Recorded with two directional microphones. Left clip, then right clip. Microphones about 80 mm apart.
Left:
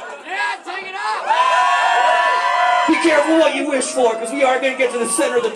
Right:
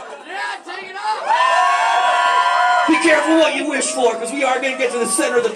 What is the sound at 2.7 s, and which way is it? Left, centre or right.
Speech, centre.